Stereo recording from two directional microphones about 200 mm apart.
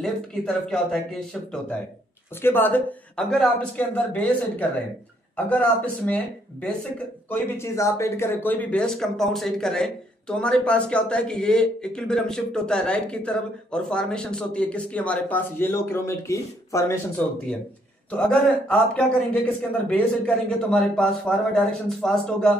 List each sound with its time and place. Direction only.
0.0 s speech: 5° left (ahead or behind)
18.1 s speech: 5° left (ahead or behind)